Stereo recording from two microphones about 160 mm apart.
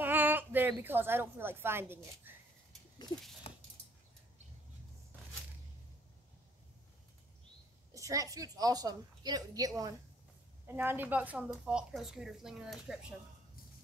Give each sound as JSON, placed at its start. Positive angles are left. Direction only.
{"t": 0.0, "sound": "a woman's voice", "side_deg": -10}
{"t": 3.4, "sound": "a sound", "side_deg": 35}
{"t": 7.9, "sound": "a woman's voice", "side_deg": -20}
{"t": 10.7, "sound": "a woman's voice", "side_deg": -15}